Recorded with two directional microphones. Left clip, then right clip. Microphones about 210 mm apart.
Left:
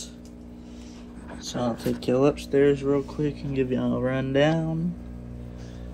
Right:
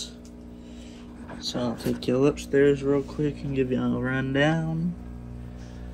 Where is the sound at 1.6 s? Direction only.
10° right (ahead or behind).